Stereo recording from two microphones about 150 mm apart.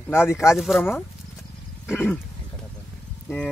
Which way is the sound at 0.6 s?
Centre (ahead or behind).